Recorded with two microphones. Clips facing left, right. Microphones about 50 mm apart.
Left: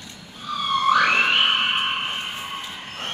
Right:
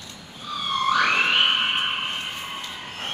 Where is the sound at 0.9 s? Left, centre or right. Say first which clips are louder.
Left 2 dB; centre.